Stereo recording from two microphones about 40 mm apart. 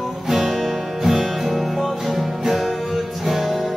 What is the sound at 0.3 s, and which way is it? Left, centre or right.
Music, centre.